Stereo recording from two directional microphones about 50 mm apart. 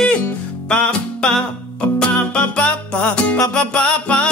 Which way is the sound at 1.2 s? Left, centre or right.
Centre.